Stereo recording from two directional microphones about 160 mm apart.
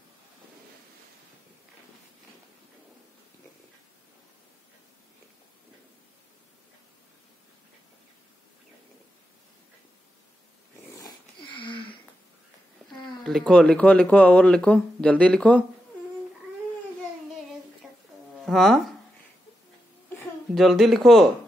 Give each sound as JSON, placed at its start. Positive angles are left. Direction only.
{"t": 11.0, "sound": "wheeze", "side_deg": 25}
{"t": 13.2, "sound": "speech", "side_deg": 5}
{"t": 18.4, "sound": "speech", "side_deg": 0}
{"t": 20.5, "sound": "speech", "side_deg": 0}